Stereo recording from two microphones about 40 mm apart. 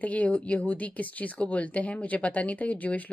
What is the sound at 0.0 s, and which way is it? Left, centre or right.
Speech, left.